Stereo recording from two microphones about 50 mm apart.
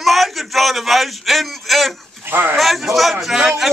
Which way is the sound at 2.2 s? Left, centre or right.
Right.